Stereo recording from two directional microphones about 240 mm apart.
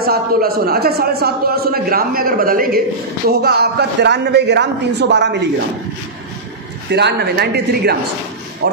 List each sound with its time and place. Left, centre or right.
0.0 s a man's voice: right
6.9 s speech: right